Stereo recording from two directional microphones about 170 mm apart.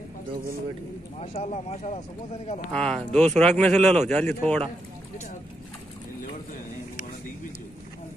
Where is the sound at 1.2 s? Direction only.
40° left (ahead or behind).